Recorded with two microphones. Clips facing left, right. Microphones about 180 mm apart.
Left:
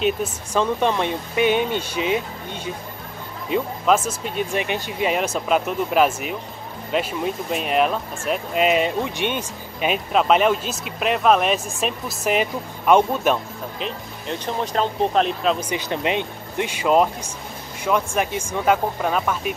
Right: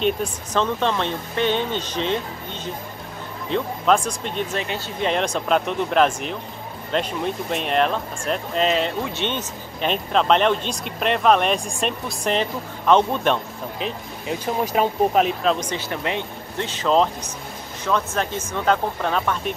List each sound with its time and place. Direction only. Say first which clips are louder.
0.0 s speech: even; 10° left (ahead or behind)